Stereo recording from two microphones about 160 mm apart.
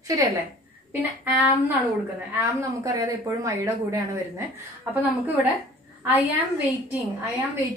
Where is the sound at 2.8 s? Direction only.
20° right (ahead or behind).